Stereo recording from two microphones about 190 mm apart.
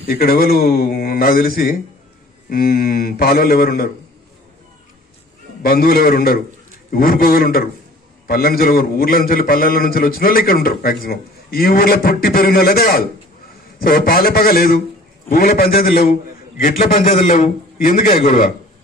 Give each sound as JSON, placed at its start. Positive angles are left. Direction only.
{"t": 0.0, "sound": "a man's voice", "side_deg": 50}
{"t": 5.6, "sound": "a man's voice", "side_deg": 55}